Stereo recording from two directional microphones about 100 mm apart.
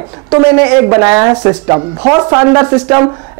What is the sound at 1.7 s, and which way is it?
A man's voice, 30° right (ahead or behind).